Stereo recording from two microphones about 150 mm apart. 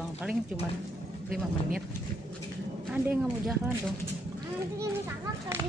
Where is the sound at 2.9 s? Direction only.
5° right (ahead or behind).